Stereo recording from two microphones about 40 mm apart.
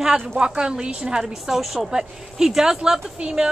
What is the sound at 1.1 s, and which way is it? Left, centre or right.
Speech, centre.